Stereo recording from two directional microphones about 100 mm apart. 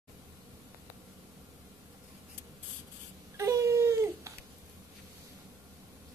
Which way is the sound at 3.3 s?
30° right (ahead or behind).